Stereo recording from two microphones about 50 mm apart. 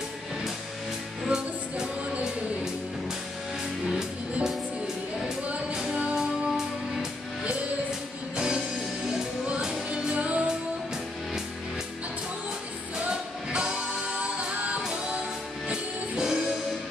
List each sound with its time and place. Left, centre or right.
1.2 s music: centre
3.9 s music: centre
6.1 s music: centre; by 10.4 s right
13.0 s music: right
15.7 s music: centre